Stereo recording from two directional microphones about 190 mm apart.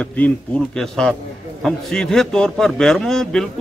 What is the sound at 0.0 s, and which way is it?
A man's voice, 10° left (ahead or behind).